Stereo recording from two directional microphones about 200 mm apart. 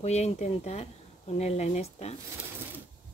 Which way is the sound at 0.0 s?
35° left (ahead or behind).